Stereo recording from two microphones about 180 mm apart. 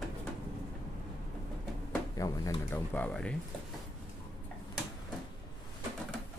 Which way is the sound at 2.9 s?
5° left (ahead or behind).